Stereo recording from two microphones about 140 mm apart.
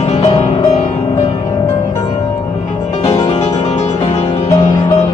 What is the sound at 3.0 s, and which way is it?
Music, 50° left (ahead or behind).